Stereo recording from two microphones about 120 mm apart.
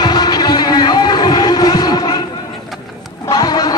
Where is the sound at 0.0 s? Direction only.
35° left (ahead or behind).